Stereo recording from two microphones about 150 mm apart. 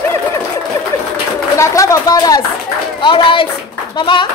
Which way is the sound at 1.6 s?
20° left (ahead or behind).